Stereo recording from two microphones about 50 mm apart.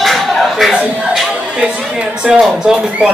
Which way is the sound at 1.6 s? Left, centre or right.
Right.